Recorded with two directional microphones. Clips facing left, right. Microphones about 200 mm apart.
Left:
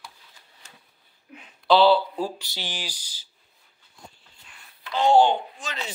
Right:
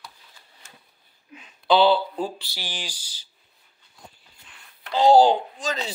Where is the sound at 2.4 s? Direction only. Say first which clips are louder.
Left 1 dB; 20° left (ahead or behind).